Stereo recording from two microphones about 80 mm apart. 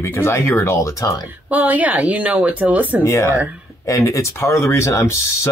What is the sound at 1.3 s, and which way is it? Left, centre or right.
Speech, centre.